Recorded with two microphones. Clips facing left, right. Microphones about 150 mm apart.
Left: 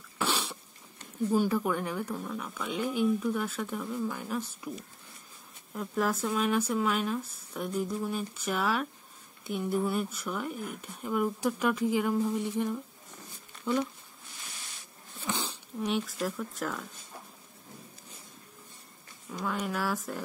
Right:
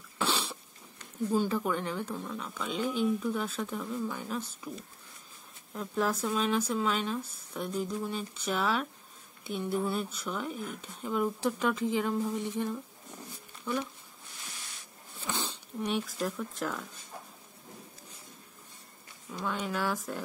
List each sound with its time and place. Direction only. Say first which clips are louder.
1.3 s speech: left 2 dB; 10° left (ahead or behind)
13.7 s speech: left 4 dB; 20° left (ahead or behind)
15.2 s a sound: left 1 dB; 15° left (ahead or behind)
15.9 s speech: left 1 dB; centre (ahead or behind)
19.3 s speech: left 1 dB; centre (ahead or behind)